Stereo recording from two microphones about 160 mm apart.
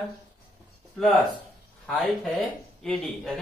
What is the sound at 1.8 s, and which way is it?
A man's voice, 5° left (ahead or behind).